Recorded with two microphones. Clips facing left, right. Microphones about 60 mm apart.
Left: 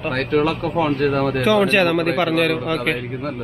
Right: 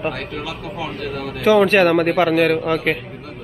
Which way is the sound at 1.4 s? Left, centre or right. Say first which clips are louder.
Right 5 dB; centre.